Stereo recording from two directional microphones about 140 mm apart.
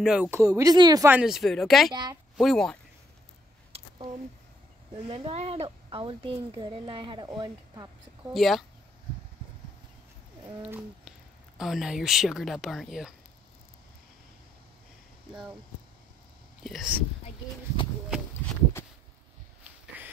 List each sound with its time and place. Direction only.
0.0 s speech: 5° right (ahead or behind)
0.3 s speech: 20° right (ahead or behind)
1.0 s speech: 10° right (ahead or behind)
3.7 s a sound: 45° right (ahead or behind)
4.9 s speech: 45° right (ahead or behind)
8.3 s speech: centre (ahead or behind)
10.6 s speech: 5° right (ahead or behind)
16.6 s speech: centre (ahead or behind)